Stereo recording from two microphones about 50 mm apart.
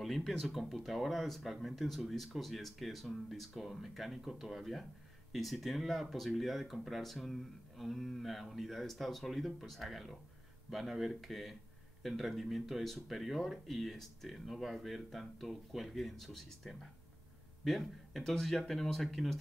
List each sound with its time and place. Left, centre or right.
0.0 s speech: centre